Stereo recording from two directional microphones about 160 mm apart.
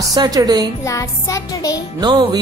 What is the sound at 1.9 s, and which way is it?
Speech, 25° right (ahead or behind).